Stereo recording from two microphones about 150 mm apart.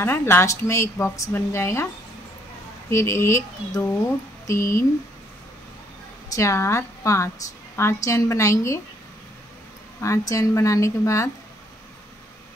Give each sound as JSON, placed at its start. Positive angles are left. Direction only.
{"t": 0.0, "sound": "speech", "side_deg": 15}
{"t": 2.9, "sound": "a woman's voice", "side_deg": 20}
{"t": 6.3, "sound": "a woman's voice", "side_deg": 20}
{"t": 10.0, "sound": "a woman's voice", "side_deg": 20}